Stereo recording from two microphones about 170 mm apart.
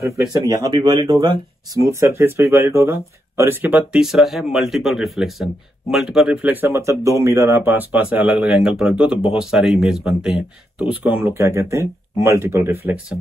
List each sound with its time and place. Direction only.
0.0 s speech: 25° right (ahead or behind)